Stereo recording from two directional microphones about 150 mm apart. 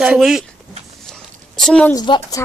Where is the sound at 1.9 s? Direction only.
30° left (ahead or behind).